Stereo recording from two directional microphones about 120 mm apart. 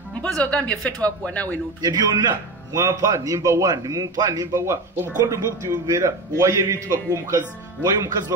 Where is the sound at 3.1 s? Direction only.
30° right (ahead or behind).